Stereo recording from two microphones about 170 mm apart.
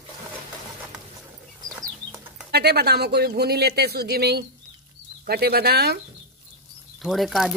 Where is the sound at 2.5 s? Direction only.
70° right (ahead or behind).